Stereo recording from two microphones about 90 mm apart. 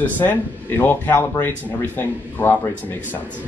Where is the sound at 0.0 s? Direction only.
20° left (ahead or behind).